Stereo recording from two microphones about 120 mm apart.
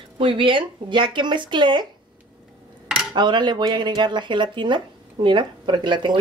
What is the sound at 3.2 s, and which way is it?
Speech, 40° right (ahead or behind).